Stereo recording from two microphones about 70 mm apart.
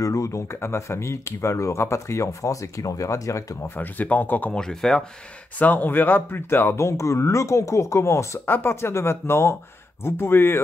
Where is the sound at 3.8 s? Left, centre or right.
Left.